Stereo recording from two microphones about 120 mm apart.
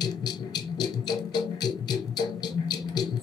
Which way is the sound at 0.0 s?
35° left (ahead or behind).